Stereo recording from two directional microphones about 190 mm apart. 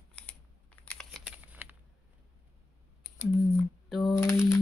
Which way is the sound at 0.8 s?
Centre (ahead or behind).